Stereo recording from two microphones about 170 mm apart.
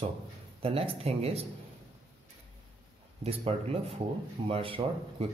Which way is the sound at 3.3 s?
35° right (ahead or behind).